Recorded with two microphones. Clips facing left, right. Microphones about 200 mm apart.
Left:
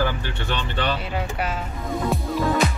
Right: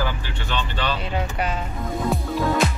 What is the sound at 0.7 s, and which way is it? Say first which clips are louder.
Speech: left 3 dB; 55° left (ahead or behind).